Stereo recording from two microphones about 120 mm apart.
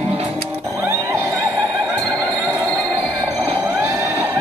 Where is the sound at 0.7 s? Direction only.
20° right (ahead or behind).